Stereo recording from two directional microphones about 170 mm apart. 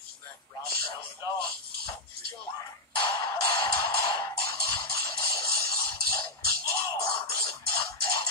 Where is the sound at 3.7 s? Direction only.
65° right (ahead or behind).